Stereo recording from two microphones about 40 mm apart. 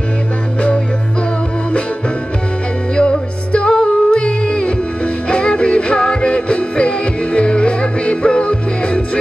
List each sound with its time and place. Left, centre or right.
3.0 s music: left